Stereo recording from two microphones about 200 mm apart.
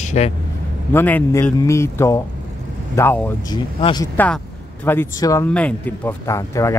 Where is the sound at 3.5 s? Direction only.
20° left (ahead or behind).